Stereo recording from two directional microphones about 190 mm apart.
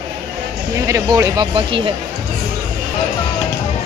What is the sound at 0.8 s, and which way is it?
Speech, 15° right (ahead or behind).